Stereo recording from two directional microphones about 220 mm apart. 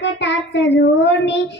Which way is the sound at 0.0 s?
55° left (ahead or behind).